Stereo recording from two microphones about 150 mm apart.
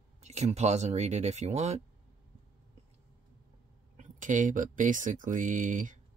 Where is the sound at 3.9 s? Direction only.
55° right (ahead or behind).